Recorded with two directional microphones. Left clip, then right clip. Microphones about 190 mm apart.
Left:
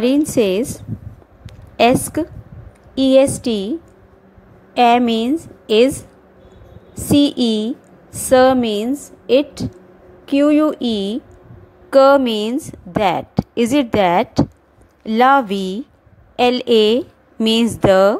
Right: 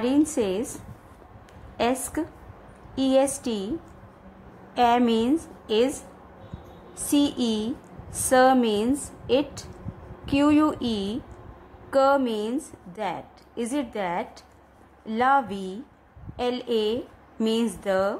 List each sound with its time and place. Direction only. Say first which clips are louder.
0.0 s a woman's voice: left 8 dB; 30° left (ahead or behind)
1.8 s a woman's voice: left 12 dB; 30° left (ahead or behind)
4.7 s a woman's voice: left 8 dB; 25° left (ahead or behind)
7.1 s a woman's voice: left 9 dB; 25° left (ahead or behind)
11.9 s a woman's voice: left 10 dB; 35° left (ahead or behind)